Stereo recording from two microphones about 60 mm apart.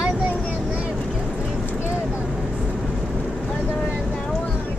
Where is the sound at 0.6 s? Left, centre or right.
Centre.